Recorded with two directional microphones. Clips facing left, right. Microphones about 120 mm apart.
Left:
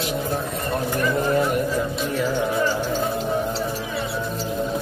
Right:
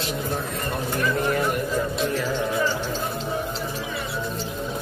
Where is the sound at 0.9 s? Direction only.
20° left (ahead or behind).